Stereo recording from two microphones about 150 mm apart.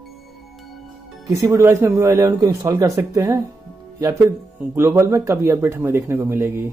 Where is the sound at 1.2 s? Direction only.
20° right (ahead or behind).